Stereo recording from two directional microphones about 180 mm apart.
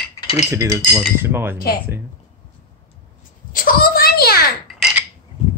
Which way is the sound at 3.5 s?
50° left (ahead or behind).